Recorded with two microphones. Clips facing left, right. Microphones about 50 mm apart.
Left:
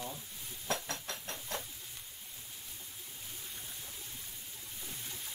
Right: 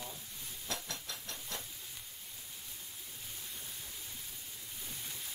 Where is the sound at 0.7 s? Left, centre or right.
Left.